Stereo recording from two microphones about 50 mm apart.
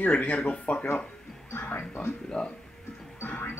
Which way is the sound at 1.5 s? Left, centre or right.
Left.